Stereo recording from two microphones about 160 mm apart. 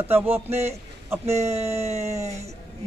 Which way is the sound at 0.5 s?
40° right (ahead or behind).